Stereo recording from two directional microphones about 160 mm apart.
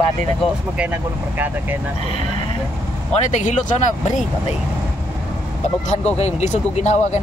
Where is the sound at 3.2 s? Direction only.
50° left (ahead or behind).